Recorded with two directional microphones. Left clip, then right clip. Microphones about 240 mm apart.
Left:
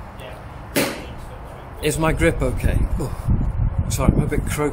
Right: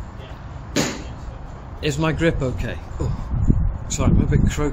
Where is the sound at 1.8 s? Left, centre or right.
Centre.